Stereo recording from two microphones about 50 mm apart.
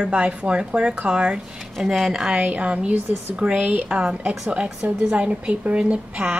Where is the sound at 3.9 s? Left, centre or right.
Centre.